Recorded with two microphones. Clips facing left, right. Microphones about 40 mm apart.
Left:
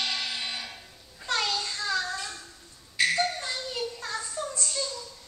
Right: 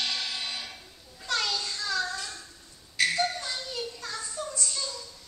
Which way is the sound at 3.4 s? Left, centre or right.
Left.